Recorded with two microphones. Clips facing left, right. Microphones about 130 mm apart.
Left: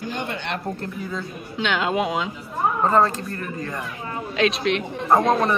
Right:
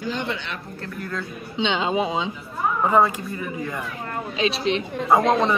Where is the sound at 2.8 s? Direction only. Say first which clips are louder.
Right 1 dB; 10° right (ahead or behind).